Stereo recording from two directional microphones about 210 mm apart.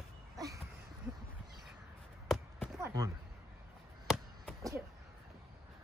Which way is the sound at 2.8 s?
15° right (ahead or behind).